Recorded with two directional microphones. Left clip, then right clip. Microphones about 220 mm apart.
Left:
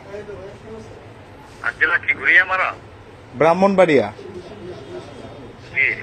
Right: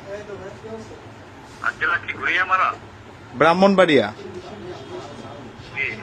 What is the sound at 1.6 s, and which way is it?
A man's voice, 15° left (ahead or behind).